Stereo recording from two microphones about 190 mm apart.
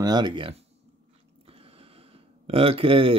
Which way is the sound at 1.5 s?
30° right (ahead or behind).